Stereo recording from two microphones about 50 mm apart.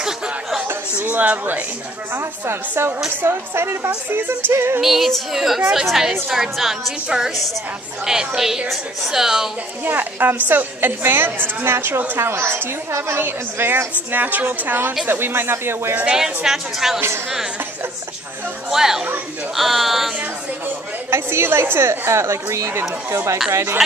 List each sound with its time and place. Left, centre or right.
0.0 s music: centre
1.0 s a woman's voice: right
2.1 s a woman's voice: right
4.7 s a woman's voice: centre
9.8 s a woman's voice: right
14.1 s a woman's voice: right
16.1 s a woman's voice: centre
18.7 s a woman's voice: centre
21.1 s a woman's voice: right
23.5 s a woman's voice: right